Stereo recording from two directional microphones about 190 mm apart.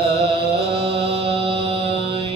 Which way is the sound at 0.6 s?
30° right (ahead or behind).